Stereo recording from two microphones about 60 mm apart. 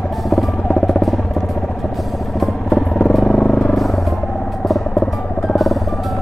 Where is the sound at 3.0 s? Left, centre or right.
Centre.